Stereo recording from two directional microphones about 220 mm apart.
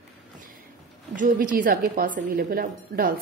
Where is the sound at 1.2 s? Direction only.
40° right (ahead or behind).